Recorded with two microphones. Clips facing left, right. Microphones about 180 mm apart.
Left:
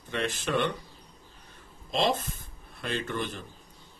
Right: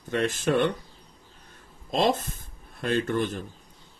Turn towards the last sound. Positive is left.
turn(degrees=-50)  # may be behind; listen again after turning